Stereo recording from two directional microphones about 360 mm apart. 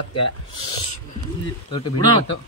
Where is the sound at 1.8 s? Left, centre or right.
Centre.